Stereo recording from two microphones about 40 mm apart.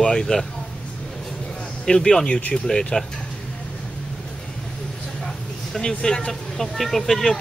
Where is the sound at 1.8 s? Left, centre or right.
Centre.